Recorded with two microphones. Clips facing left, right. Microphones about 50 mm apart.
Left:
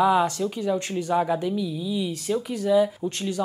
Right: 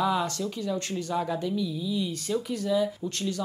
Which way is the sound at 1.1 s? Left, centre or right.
Left.